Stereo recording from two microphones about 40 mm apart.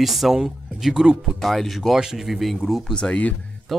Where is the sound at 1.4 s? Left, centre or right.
Centre.